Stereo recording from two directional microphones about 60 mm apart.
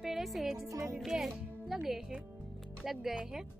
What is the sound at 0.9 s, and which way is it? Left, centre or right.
Speech, centre.